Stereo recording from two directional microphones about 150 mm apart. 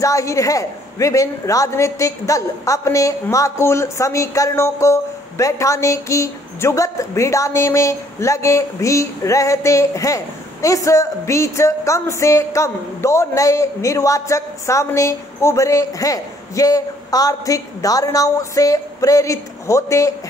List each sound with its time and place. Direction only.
0.0 s a man's voice: 20° left (ahead or behind)